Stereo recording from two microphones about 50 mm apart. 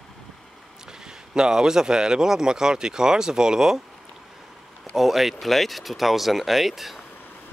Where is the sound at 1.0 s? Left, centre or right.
Centre.